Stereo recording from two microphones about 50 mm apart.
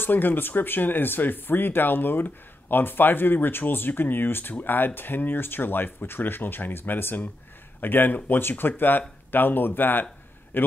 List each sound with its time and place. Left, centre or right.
0.0 s a man's voice: left